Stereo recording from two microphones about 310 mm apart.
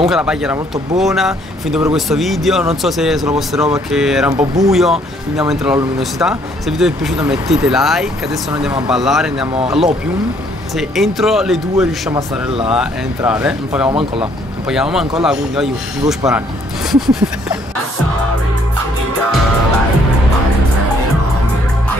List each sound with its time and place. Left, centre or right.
0.0 s speech: centre
12.1 s speech: centre
12.7 s speech: centre
13.8 s speech: centre
14.7 s speech: centre